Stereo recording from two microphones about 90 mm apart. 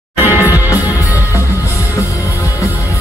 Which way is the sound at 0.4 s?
35° left (ahead or behind).